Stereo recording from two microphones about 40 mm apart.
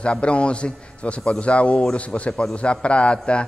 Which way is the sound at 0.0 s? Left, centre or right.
Left.